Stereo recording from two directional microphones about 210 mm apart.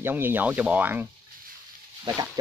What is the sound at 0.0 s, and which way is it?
Speech, 10° right (ahead or behind).